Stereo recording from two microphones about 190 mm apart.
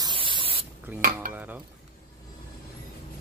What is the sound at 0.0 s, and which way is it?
Spray, 25° right (ahead or behind).